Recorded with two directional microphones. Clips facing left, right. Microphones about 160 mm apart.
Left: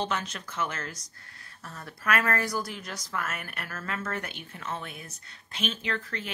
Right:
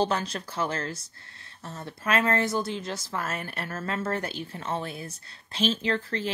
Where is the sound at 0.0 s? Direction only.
35° right (ahead or behind).